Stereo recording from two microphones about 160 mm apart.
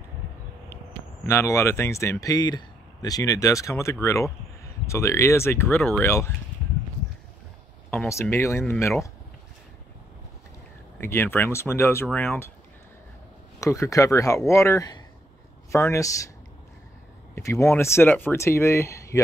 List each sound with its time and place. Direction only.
1.2 s speech: 15° left (ahead or behind)
8.1 s speech: 15° left (ahead or behind)
11.0 s speech: 15° left (ahead or behind)
13.6 s speech: 20° left (ahead or behind)
17.4 s speech: 20° left (ahead or behind)